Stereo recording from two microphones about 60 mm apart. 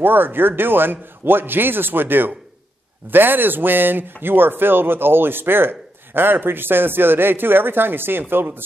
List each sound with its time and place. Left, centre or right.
0.0 s a man's voice: right